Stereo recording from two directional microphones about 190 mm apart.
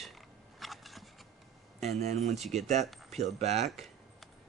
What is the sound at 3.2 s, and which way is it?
Speech, 35° right (ahead or behind).